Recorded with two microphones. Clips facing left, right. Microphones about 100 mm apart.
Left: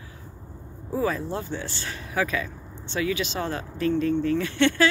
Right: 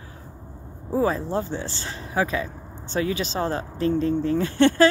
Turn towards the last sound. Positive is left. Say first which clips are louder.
# right 4 dB
turn(degrees=-35)  # may be behind; listen again after turning